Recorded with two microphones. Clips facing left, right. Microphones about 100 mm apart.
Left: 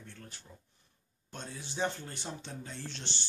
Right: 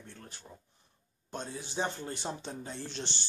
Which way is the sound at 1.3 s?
25° right (ahead or behind).